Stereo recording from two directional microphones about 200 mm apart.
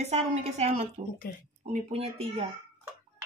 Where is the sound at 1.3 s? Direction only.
50° left (ahead or behind).